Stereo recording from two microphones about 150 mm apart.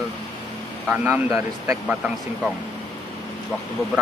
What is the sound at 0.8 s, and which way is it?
Speech, 5° right (ahead or behind).